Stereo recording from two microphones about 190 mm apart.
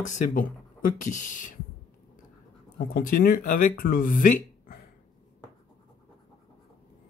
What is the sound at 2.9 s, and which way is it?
Speech, 50° left (ahead or behind).